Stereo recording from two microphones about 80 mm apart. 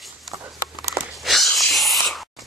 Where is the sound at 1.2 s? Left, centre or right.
Centre.